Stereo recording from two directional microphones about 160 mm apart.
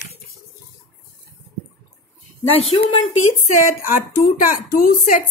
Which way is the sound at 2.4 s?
40° left (ahead or behind).